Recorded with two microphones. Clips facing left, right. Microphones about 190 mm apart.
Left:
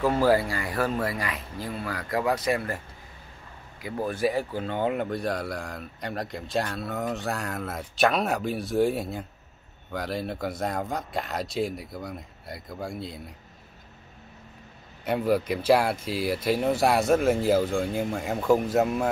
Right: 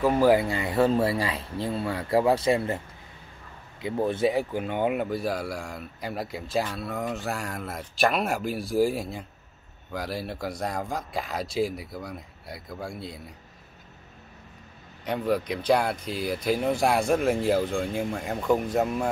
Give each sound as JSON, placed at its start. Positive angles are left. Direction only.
{"t": 0.0, "sound": "speech", "side_deg": -15}
{"t": 3.8, "sound": "speech", "side_deg": -25}
{"t": 15.0, "sound": "speech", "side_deg": 5}